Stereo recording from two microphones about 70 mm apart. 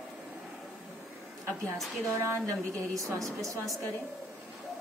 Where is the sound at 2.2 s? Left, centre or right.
Right.